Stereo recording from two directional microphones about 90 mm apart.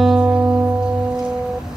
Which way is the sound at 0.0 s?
5° right (ahead or behind).